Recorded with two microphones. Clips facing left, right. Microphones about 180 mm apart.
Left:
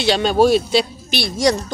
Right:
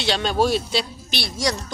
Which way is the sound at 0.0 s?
10° left (ahead or behind).